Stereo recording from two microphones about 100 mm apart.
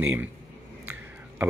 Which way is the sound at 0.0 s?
20° right (ahead or behind).